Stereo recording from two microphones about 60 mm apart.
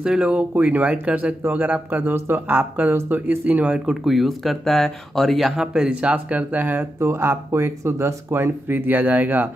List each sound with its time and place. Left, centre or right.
0.0 s speech: centre
3.7 s speech: centre
5.7 s speech: centre; by 6.9 s right
7.0 s speech: right